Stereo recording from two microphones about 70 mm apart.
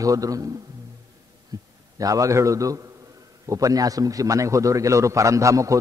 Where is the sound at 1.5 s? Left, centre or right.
Right.